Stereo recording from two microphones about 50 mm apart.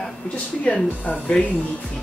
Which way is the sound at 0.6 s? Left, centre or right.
Left.